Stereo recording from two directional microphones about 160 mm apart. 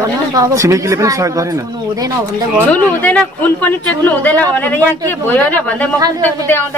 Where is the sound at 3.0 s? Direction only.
10° left (ahead or behind).